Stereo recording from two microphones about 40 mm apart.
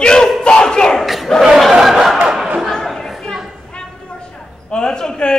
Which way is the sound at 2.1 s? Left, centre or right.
Centre.